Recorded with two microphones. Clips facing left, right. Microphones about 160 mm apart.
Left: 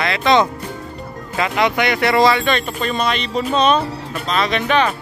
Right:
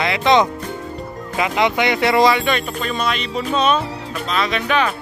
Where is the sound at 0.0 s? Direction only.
20° right (ahead or behind).